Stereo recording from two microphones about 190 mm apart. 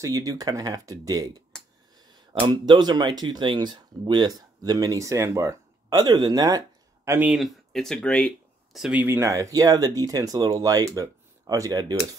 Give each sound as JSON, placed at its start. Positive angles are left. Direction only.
{"t": 0.0, "sound": "speech", "side_deg": -20}
{"t": 7.1, "sound": "speech", "side_deg": -10}
{"t": 7.7, "sound": "speech", "side_deg": 5}